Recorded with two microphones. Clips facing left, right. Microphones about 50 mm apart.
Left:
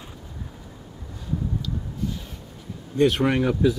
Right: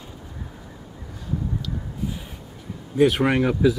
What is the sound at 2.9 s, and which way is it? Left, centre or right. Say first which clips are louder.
Speech: right 2 dB; centre.